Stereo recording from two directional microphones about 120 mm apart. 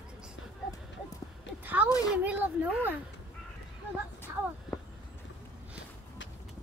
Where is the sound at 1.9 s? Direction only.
30° left (ahead or behind).